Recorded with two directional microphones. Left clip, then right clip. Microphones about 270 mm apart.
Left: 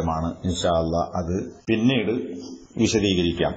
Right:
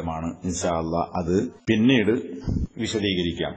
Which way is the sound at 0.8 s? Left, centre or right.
Centre.